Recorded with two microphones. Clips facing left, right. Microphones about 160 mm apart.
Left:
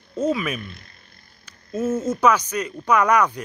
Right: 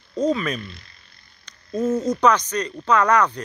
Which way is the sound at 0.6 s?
50° left (ahead or behind).